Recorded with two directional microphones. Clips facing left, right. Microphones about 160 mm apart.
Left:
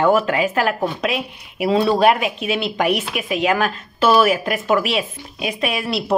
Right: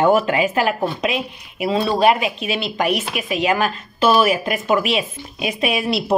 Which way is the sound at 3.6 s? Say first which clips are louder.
Even; 10° right (ahead or behind).